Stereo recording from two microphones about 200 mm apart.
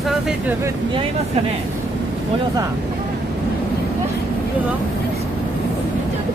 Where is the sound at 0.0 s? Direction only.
5° right (ahead or behind).